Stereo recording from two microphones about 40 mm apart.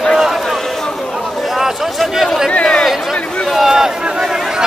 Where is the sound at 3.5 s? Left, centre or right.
Centre.